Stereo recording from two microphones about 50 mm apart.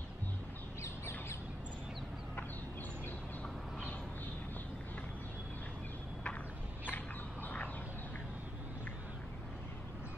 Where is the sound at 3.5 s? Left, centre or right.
Centre.